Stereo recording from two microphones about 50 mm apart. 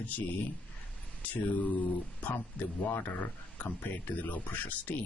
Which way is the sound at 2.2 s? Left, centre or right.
Left.